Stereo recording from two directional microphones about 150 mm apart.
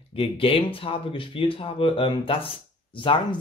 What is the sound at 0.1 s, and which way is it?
Speech, 35° left (ahead or behind).